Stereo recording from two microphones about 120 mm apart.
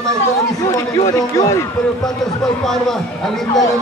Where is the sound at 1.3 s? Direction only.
25° left (ahead or behind).